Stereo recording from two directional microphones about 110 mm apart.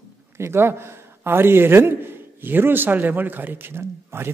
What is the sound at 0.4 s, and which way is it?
A man's voice, 20° right (ahead or behind).